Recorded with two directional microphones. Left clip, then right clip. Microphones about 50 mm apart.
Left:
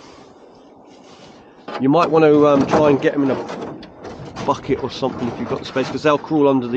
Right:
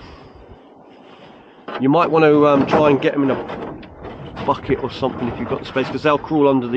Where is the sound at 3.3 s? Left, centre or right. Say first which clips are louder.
Even; left.